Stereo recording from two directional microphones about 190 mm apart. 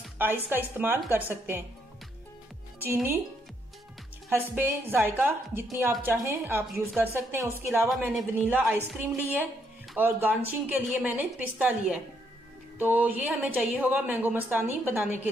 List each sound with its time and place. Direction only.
0.0 s a woman's voice: 10° right (ahead or behind)
2.8 s a woman's voice: 10° right (ahead or behind)
4.3 s a woman's voice: 10° right (ahead or behind)